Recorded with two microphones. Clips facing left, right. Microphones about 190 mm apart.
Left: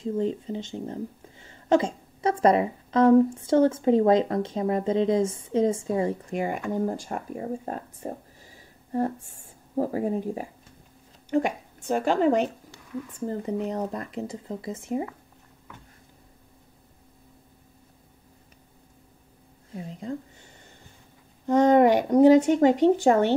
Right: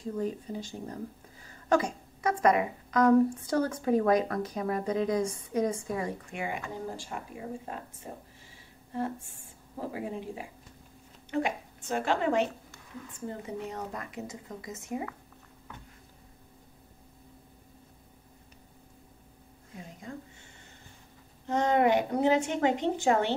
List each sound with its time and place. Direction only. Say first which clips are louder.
0.0 s speech: left 6 dB; 25° left (ahead or behind)
6.3 s speech: left 8 dB; 45° left (ahead or behind)
19.7 s speech: left 9 dB; 30° left (ahead or behind)
21.5 s speech: left 7 dB; 45° left (ahead or behind)